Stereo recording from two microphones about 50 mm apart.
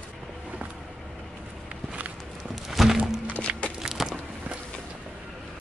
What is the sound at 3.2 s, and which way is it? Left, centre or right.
Music, left.